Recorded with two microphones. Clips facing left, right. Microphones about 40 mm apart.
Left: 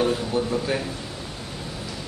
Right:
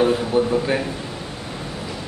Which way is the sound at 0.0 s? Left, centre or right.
Centre.